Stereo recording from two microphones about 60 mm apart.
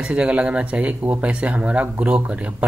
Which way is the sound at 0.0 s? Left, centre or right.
Centre.